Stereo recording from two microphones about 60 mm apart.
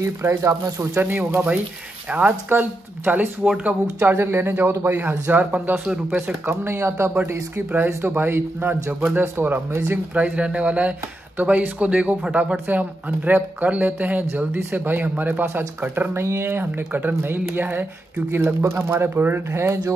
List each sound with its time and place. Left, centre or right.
0.0 s speech: right
0.7 s speech: right
3.4 s speech: centre
4.0 s speech: right
5.3 s speech: right
6.5 s speech: right
7.5 s speech: right
10.1 s speech: right
16.1 s speech: right